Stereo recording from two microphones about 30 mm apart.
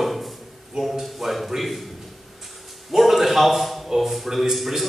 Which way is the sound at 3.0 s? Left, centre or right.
Centre.